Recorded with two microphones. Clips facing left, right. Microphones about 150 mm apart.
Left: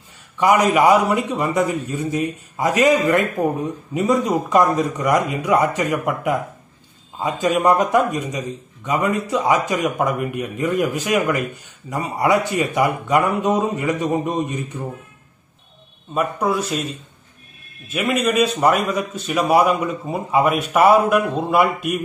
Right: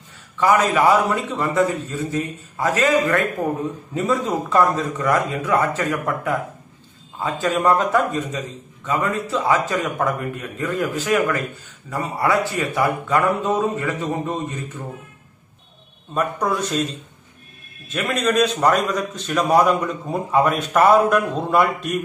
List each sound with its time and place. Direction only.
0.4 s a man's voice: 15° left (ahead or behind)
16.1 s a man's voice: 5° left (ahead or behind)
17.8 s a man's voice: 10° left (ahead or behind)